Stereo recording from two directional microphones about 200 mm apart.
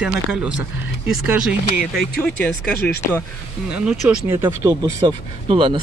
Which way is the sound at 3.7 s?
5° right (ahead or behind).